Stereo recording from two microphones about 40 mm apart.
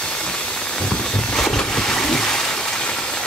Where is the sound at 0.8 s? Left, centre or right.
Centre.